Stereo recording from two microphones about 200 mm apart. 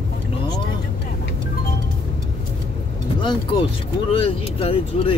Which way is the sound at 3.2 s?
25° left (ahead or behind).